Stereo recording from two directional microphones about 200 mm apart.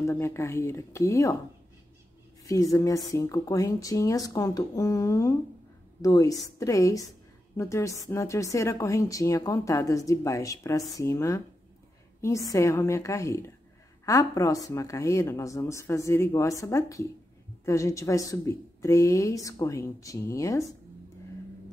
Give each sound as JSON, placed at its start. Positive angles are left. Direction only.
{"t": 0.0, "sound": "speech", "side_deg": 15}
{"t": 2.4, "sound": "speech", "side_deg": 15}